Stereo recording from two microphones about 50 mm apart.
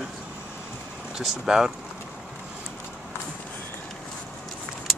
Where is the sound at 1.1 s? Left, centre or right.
Centre.